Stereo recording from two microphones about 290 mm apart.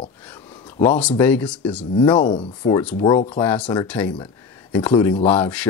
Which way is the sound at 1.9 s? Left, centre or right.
Centre.